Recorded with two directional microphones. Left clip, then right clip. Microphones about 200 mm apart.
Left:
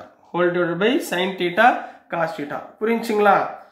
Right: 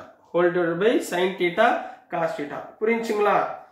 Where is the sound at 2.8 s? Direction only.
45° left (ahead or behind).